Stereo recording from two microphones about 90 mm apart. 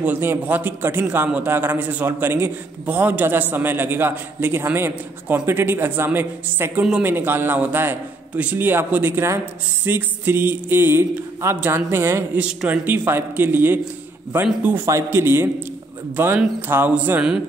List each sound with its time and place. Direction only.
0.0 s a man's voice: 20° right (ahead or behind)
12.4 s a man's voice: 15° right (ahead or behind)
14.9 s a man's voice: 30° right (ahead or behind)